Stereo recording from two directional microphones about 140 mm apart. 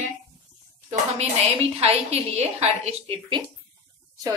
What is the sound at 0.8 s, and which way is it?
A woman's voice, 45° right (ahead or behind).